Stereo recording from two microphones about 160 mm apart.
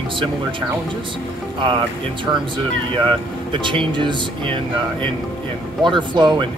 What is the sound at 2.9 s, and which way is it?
Speech, 30° right (ahead or behind).